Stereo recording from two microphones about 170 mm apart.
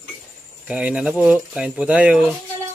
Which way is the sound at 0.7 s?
5° right (ahead or behind).